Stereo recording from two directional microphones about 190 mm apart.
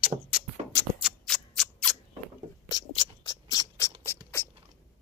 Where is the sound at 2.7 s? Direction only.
25° left (ahead or behind).